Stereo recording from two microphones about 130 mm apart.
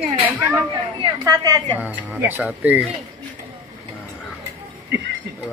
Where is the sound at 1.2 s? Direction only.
30° right (ahead or behind).